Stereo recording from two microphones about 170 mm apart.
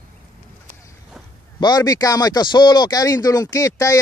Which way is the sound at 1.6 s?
25° left (ahead or behind).